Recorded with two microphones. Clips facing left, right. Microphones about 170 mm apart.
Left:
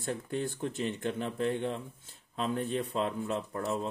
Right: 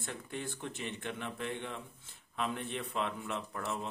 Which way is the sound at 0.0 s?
40° left (ahead or behind).